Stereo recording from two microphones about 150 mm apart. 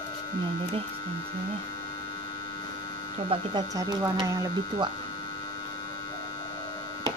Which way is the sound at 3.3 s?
30° right (ahead or behind).